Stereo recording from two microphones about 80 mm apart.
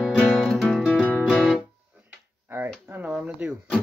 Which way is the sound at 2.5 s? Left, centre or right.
Right.